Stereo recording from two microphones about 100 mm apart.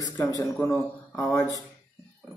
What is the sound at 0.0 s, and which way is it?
A man's voice, 35° left (ahead or behind).